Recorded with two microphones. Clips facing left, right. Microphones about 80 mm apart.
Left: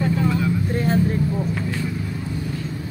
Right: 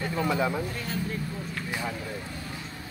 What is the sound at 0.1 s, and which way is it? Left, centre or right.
Vehicle, centre.